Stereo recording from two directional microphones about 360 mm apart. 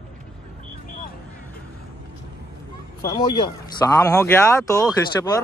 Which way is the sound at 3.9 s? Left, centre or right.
Centre.